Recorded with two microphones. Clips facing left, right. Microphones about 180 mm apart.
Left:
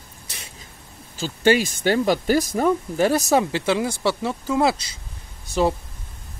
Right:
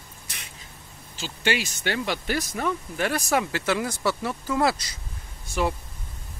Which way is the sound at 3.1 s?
25° left (ahead or behind).